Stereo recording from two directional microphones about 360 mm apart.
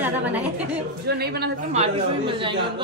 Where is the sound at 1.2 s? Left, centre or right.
Right.